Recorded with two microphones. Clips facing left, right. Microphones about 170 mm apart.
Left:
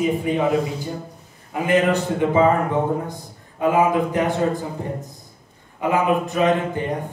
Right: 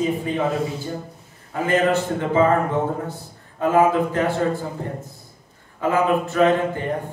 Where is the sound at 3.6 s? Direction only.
15° left (ahead or behind).